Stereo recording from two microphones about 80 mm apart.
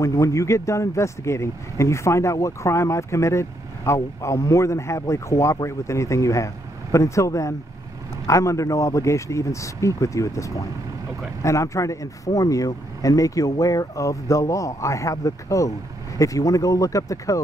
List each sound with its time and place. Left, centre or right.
0.0 s speech: left